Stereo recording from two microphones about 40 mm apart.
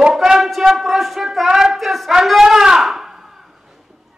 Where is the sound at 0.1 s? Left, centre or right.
Centre.